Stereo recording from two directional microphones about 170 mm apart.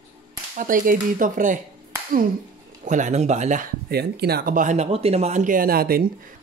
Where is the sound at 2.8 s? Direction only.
45° right (ahead or behind).